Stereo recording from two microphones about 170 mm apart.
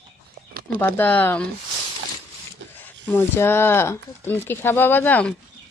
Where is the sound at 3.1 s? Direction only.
10° left (ahead or behind).